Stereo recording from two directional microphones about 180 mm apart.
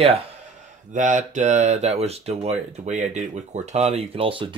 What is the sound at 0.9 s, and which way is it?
Speech, 45° right (ahead or behind).